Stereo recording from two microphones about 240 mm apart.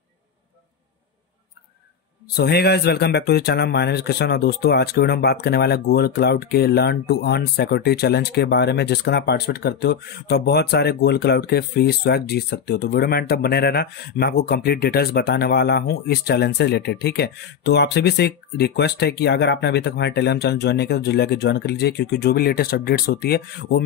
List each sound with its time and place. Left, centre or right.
2.3 s a man's voice: left